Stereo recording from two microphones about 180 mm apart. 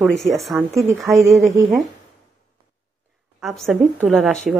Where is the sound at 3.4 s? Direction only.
Centre (ahead or behind).